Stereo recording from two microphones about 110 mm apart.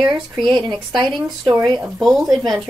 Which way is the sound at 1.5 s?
40° right (ahead or behind).